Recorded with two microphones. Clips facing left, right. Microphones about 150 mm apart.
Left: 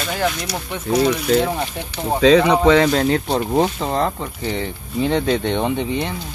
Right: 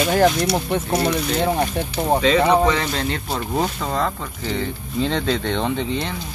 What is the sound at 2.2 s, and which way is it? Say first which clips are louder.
Speech: left 5 dB; 80° left.